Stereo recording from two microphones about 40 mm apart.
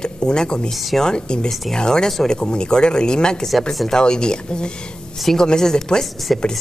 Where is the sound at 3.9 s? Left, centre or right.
Left.